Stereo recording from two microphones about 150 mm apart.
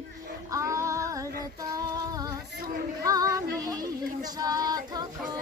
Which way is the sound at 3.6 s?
25° right (ahead or behind).